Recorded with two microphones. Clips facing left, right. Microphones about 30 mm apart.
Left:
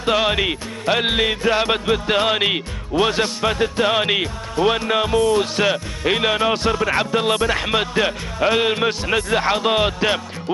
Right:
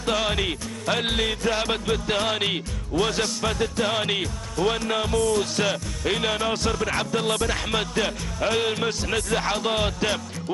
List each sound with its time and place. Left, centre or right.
0.0 s music: left